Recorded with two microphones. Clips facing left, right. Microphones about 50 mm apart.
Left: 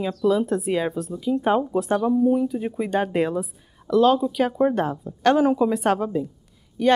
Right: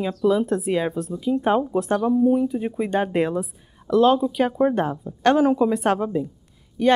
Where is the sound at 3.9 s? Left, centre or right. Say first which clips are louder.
Right 1 dB; centre.